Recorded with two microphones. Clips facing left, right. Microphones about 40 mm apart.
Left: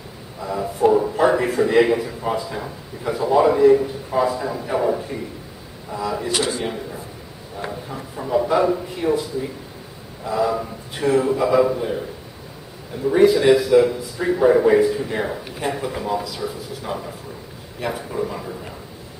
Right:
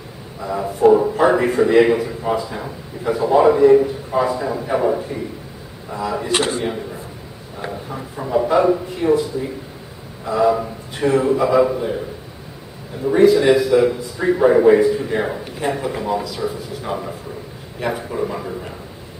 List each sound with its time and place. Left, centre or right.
0.4 s a man's voice: centre
6.3 s a man's voice: right
6.6 s a man's voice: centre
10.2 s a man's voice: centre
13.1 s a man's voice: centre